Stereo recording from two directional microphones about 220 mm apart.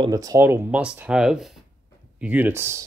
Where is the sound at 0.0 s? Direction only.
15° right (ahead or behind).